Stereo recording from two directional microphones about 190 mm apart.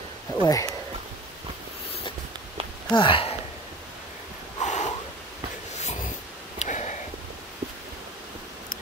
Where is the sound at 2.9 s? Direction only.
25° left (ahead or behind).